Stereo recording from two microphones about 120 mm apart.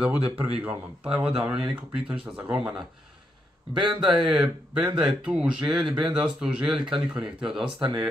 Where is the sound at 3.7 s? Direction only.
40° right (ahead or behind).